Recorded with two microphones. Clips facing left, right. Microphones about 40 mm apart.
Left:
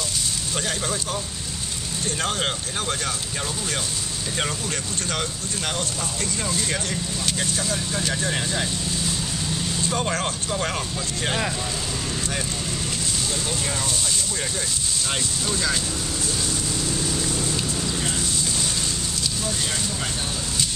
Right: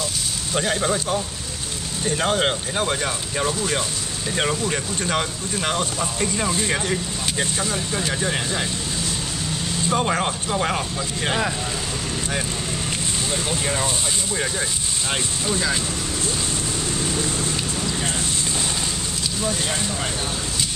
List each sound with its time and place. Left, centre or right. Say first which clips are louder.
0.6 s speech: right 7 dB; centre
9.8 s speech: right 5 dB; centre
13.3 s speech: right 3 dB; right
15.4 s speech: right 2 dB; centre